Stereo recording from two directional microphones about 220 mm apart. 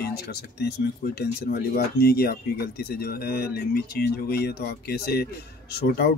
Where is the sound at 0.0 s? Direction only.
45° left (ahead or behind).